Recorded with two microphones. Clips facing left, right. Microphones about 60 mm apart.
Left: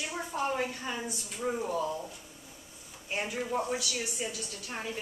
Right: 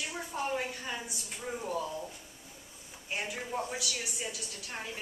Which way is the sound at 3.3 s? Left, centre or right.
Centre.